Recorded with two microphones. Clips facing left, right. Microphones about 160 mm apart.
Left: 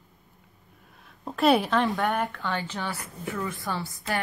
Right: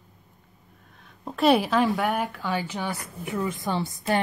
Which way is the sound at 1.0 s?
Centre (ahead or behind).